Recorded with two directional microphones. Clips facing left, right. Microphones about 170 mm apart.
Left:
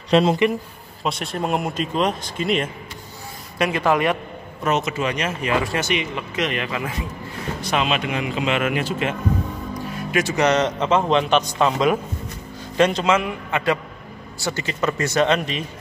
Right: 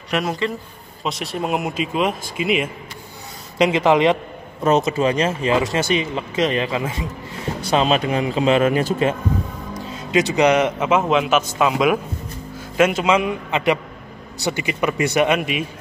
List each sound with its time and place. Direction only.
0.1 s speech: 25° left (ahead or behind)
1.0 s speech: centre (ahead or behind)
3.5 s speech: 20° right (ahead or behind)
9.8 s a man's voice: 20° right (ahead or behind)